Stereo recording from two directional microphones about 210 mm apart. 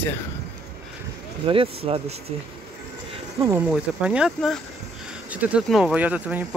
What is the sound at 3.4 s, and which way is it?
Speech, 10° right (ahead or behind).